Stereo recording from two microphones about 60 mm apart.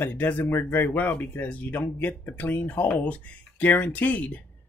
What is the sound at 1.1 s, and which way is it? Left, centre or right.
Speech, left.